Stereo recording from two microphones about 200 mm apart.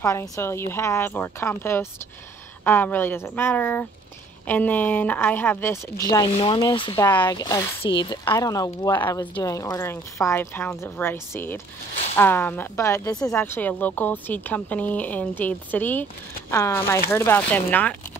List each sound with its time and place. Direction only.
0.0 s speech: 10° left (ahead or behind)